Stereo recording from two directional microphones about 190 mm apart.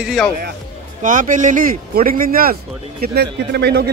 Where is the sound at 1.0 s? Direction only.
45° right (ahead or behind).